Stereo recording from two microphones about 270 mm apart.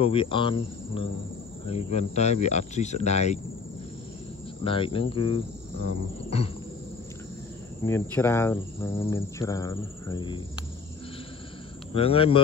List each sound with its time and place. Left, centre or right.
0.0 s speech: centre
4.6 s speech: centre
7.8 s speech: centre
11.9 s speech: left